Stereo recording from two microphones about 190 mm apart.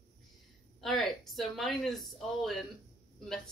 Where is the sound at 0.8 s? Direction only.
Centre (ahead or behind).